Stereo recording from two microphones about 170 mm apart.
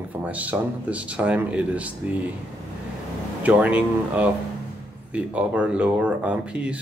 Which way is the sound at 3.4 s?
10° right (ahead or behind).